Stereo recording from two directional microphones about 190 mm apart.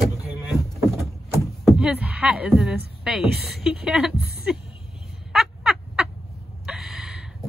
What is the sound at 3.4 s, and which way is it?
Speech, 55° right (ahead or behind).